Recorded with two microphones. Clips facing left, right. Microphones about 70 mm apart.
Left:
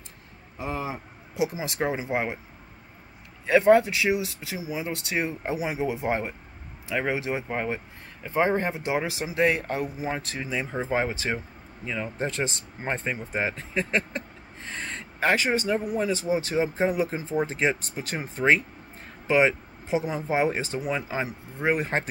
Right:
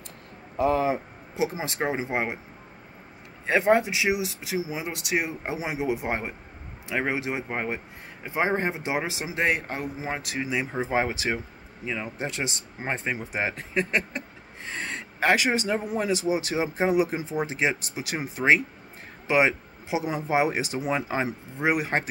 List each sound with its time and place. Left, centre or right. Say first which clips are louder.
0.6 s speech: right 9 dB; right
1.3 s speech: even; right
3.4 s speech: left 3 dB; right